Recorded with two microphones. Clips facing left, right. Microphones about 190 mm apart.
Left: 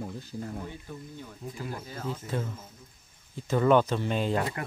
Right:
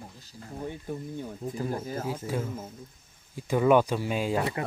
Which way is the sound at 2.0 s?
10° right (ahead or behind).